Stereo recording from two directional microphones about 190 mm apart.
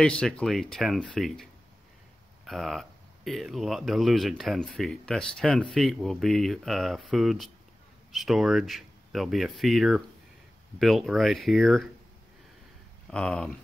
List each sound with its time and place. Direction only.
0.0 s speech: 5° left (ahead or behind)
13.1 s speech: 5° left (ahead or behind)